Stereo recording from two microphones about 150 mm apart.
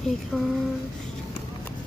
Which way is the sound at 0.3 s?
Centre (ahead or behind).